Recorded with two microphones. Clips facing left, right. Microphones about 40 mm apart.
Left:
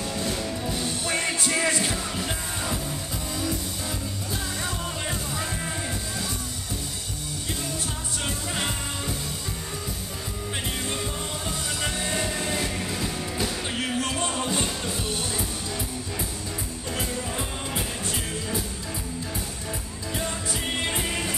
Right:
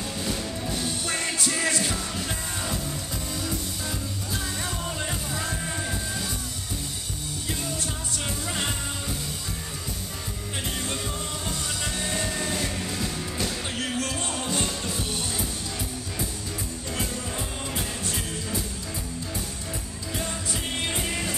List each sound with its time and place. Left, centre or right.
0.2 s music: centre
1.0 s music: centre
1.6 s music: left
2.1 s music: centre
12.0 s music: centre
13.7 s music: left; by 15.4 s centre
16.9 s music: centre
20.9 s music: centre